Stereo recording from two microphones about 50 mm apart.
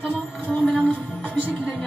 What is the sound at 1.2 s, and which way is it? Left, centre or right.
Music, right.